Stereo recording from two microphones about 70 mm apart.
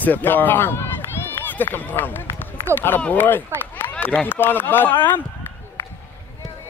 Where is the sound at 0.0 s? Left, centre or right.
Left.